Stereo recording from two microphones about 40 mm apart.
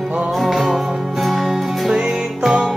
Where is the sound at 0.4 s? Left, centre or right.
Centre.